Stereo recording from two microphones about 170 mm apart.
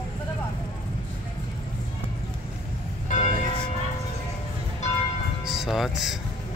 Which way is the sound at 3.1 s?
45° left (ahead or behind).